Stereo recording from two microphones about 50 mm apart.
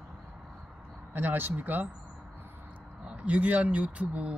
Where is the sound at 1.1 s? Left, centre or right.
Right.